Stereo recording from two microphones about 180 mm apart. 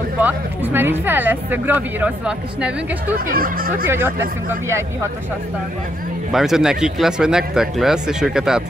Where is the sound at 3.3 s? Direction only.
55° right (ahead or behind).